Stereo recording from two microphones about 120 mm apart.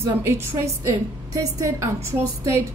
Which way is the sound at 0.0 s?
20° right (ahead or behind).